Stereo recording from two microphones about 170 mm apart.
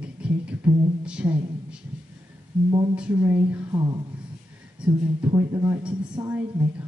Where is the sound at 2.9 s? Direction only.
10° right (ahead or behind).